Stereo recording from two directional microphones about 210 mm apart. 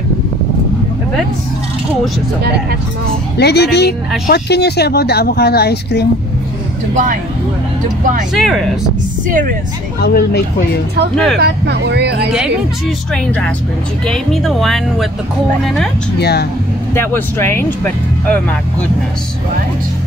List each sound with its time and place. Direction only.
3.3 s speech: 50° left (ahead or behind)
6.9 s speech: 35° right (ahead or behind)
8.4 s speech: centre (ahead or behind)
9.3 s speech: 40° right (ahead or behind)
10.0 s speech: 50° left (ahead or behind)
11.3 s speech: 50° right (ahead or behind)
13.1 s speech: 5° left (ahead or behind)
16.2 s speech: 50° left (ahead or behind)
16.9 s speech: 10° left (ahead or behind)